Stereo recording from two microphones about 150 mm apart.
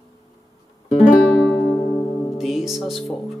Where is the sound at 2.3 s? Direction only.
Centre (ahead or behind).